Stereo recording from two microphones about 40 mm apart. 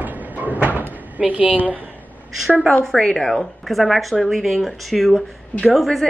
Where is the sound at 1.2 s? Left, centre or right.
Right.